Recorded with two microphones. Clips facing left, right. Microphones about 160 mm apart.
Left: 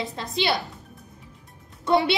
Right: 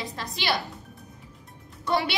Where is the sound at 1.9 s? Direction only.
25° left (ahead or behind).